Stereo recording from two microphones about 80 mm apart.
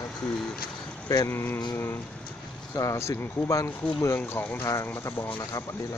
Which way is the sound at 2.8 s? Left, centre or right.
Left.